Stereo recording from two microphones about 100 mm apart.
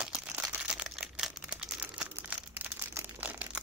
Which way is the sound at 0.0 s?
10° right (ahead or behind).